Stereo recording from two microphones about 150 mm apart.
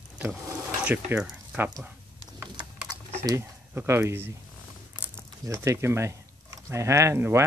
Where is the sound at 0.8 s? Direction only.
10° right (ahead or behind).